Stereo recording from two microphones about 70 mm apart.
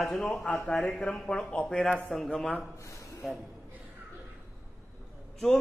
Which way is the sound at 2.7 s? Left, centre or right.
Left.